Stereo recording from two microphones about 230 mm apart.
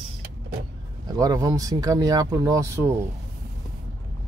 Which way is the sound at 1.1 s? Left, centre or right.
Centre.